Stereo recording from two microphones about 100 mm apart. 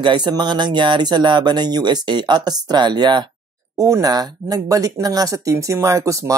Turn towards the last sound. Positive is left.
turn(degrees=-30)  # may be behind; listen again after turning